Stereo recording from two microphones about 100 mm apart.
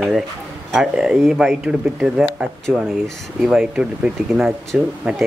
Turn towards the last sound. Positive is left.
turn(degrees=-5)  # may be behind; listen again after turning